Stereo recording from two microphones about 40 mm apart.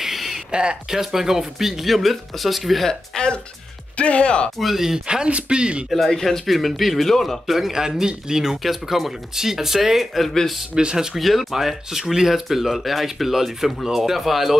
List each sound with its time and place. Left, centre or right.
0.0 s a sound: centre
0.5 s speech: right
0.9 s speech: centre
2.8 s speech: centre
3.9 s speech: left
4.6 s speech: centre
5.0 s speech: right
5.9 s speech: centre
7.5 s speech: centre
8.6 s speech: centre
10.7 s speech: right
11.1 s speech: centre